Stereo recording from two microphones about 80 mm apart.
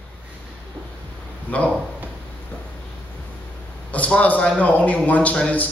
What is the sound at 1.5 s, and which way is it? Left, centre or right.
Speech, centre.